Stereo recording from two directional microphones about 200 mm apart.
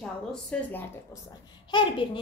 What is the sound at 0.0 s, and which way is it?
Speech, 5° left (ahead or behind).